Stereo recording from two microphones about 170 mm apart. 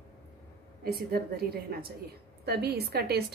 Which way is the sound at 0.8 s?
65° right (ahead or behind).